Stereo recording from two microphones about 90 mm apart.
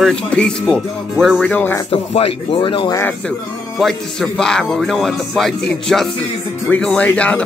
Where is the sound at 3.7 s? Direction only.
Centre (ahead or behind).